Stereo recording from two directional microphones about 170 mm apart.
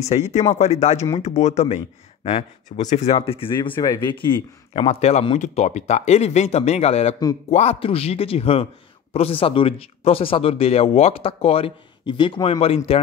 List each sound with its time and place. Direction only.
0.0 s speech: 40° left (ahead or behind)
4.7 s speech: 40° left (ahead or behind)